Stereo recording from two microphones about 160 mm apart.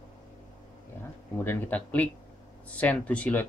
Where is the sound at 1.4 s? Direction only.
10° left (ahead or behind).